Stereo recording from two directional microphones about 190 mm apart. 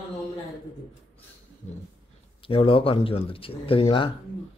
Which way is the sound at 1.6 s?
40° left (ahead or behind).